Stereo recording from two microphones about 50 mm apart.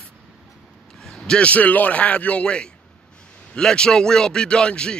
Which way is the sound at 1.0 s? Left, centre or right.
Centre.